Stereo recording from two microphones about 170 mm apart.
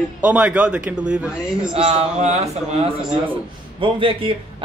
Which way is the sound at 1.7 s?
40° right (ahead or behind).